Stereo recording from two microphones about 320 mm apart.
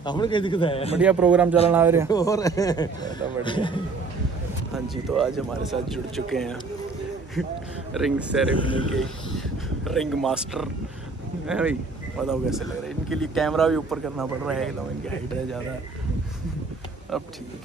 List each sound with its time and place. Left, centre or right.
0.0 s speech: centre
0.9 s speech: centre
2.0 s speech: centre
4.7 s speech: centre
17.1 s speech: centre